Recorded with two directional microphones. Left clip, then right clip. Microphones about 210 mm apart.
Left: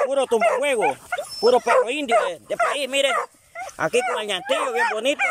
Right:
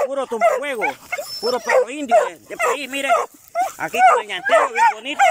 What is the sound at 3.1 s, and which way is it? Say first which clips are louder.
Dog: right 7 dB; 50° right (ahead or behind).